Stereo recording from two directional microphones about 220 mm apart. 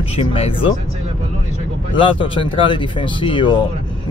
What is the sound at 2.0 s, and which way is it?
Speech, 25° left (ahead or behind).